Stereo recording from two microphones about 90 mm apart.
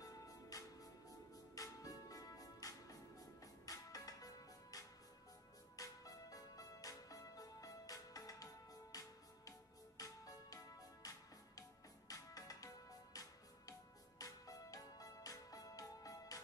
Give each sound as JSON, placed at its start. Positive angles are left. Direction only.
{"t": 0.0, "sound": "music", "side_deg": 40}